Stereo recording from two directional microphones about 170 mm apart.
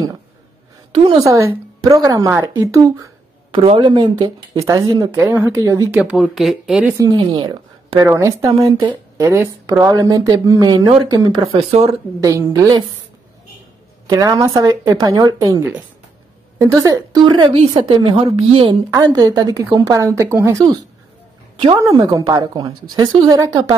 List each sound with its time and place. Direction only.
0.9 s speech: 25° right (ahead or behind)
3.5 s speech: 30° right (ahead or behind)
5.9 s speech: 5° right (ahead or behind)
7.0 s a woman's voice: 25° right (ahead or behind)
8.1 s a woman's voice: 15° right (ahead or behind)
8.5 s a woman's voice: 35° right (ahead or behind)
12.2 s speech: 20° right (ahead or behind)
14.0 s a woman's voice: 20° right (ahead or behind)
18.9 s speech: 20° right (ahead or behind)